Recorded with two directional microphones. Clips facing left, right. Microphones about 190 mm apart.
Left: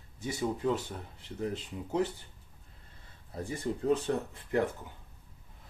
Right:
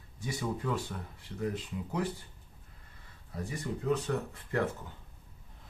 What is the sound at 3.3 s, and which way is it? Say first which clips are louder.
Speech: left 3 dB; 30° left (ahead or behind).